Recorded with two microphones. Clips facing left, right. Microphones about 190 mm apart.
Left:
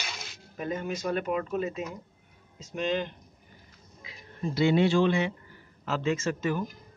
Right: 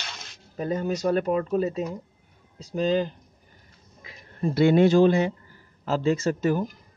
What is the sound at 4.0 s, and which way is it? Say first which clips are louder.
Speech: right 6 dB; 50° right (ahead or behind).